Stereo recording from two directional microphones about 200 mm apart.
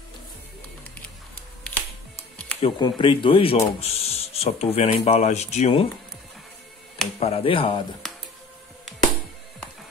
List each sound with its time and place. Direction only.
1.6 s music: 5° left (ahead or behind)
2.6 s speech: 25° left (ahead or behind)
7.2 s speech: 30° left (ahead or behind)